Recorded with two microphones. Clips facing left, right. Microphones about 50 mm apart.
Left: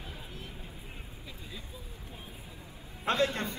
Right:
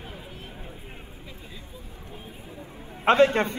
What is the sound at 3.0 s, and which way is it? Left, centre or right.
Speech, right.